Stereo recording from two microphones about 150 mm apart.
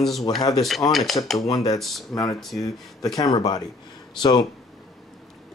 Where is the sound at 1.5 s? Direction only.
25° left (ahead or behind).